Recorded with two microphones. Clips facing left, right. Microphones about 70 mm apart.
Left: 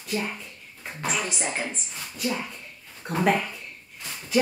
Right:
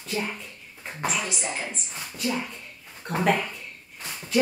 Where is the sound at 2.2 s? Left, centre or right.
Centre.